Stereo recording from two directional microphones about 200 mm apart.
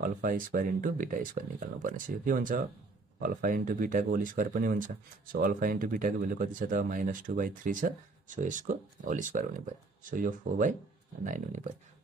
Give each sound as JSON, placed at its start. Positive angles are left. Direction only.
{"t": 0.0, "sound": "speech", "side_deg": -40}